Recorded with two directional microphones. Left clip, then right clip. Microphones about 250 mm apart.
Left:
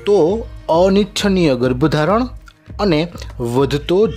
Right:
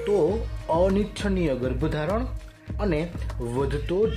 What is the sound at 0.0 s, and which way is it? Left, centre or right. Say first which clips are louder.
Speech: left 9 dB; left.